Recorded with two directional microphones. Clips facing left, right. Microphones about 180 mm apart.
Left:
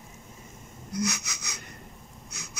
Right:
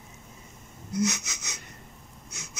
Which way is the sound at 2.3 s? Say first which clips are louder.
Even; 25° right (ahead or behind).